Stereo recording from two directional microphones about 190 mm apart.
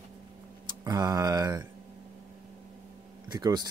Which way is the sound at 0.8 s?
20° right (ahead or behind).